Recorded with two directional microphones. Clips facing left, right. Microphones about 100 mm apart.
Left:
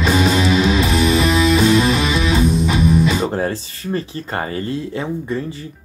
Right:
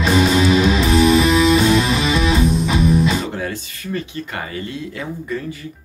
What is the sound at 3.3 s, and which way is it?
Speech, 35° left (ahead or behind).